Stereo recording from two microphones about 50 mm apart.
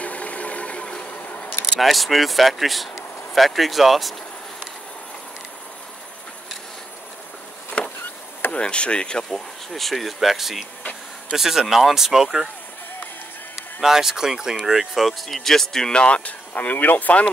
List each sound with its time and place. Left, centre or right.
0.0 s a sound: left
1.8 s speech: centre
7.8 s insect: left
8.5 s speech: left
9.3 s speech: centre
10.8 s vehicle: left
11.3 s speech: centre
13.7 s speech: centre; by 17.2 s left